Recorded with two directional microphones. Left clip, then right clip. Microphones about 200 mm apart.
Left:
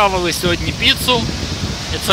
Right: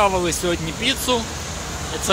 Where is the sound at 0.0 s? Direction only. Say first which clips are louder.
Left 4 dB; 5° left (ahead or behind).